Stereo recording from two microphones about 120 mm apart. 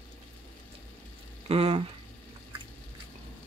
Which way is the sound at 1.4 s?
60° right (ahead or behind).